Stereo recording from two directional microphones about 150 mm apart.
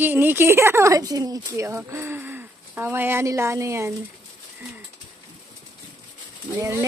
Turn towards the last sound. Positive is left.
turn(degrees=-20)  # may be behind; listen again after turning